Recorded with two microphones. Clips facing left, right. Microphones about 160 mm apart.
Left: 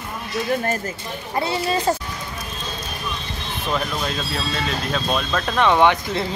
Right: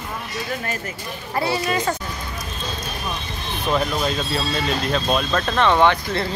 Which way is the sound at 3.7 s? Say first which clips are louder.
Right 3 dB; 5° right (ahead or behind).